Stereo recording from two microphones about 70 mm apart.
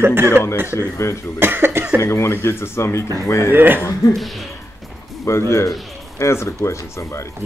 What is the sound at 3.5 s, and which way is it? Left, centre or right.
Speech, right.